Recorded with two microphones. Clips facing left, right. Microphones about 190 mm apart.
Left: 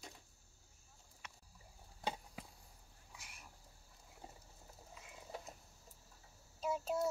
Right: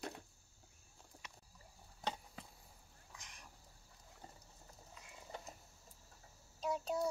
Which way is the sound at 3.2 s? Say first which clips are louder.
Even; 5° left (ahead or behind).